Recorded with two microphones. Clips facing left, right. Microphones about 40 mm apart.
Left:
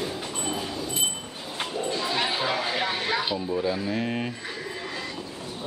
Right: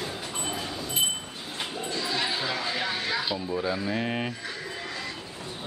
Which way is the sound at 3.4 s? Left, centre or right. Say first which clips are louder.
Left 2 dB; centre.